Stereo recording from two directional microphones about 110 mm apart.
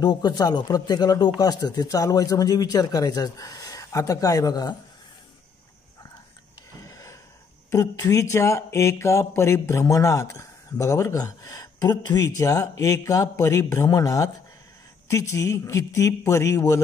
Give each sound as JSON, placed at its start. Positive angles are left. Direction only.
{"t": 0.0, "sound": "speech", "side_deg": 40}
{"t": 6.9, "sound": "a sound", "side_deg": 30}
{"t": 7.7, "sound": "speech", "side_deg": 35}